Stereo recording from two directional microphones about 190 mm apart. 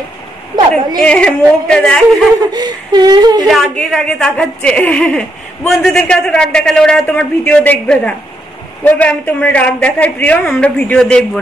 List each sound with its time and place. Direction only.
1.0 s a woman's voice: 5° left (ahead or behind)
2.5 s speech: 20° right (ahead or behind)
3.4 s a woman's voice: centre (ahead or behind)